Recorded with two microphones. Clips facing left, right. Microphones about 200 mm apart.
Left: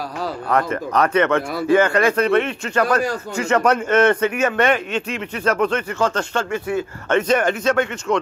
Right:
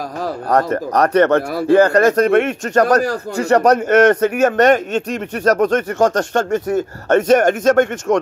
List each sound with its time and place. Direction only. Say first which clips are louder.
0.2 s speech: right 4 dB; 40° right (ahead or behind)